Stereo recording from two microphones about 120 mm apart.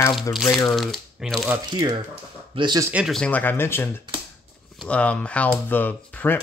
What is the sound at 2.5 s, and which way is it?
Speech, 50° right (ahead or behind).